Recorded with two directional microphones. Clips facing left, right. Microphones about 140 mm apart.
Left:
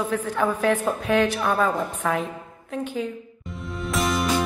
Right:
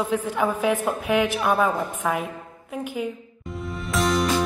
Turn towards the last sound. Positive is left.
turn(degrees=0)  # may be behind; listen again after turning